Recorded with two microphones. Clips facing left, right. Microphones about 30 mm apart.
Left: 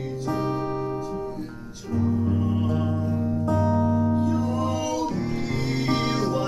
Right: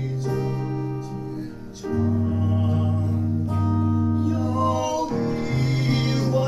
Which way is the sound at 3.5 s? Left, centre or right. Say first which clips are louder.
Left 7 dB; left.